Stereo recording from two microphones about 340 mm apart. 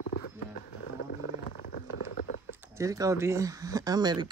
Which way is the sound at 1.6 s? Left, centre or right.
Left.